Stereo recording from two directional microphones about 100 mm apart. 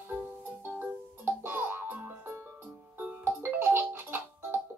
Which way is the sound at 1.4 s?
20° right (ahead or behind).